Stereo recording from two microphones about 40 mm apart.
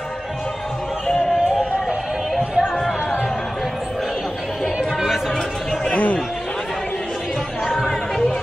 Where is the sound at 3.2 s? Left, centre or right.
Centre.